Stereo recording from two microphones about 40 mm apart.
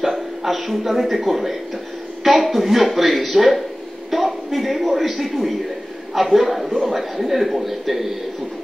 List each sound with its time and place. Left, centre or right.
0.0 s a man's voice: centre